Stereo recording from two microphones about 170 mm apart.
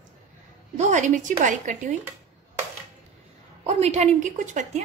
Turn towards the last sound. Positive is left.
turn(degrees=-45)  # may be behind; listen again after turning